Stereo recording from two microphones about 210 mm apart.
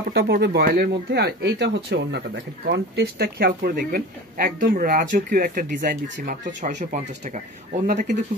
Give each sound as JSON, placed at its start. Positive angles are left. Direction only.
{"t": 0.1, "sound": "speech", "side_deg": -50}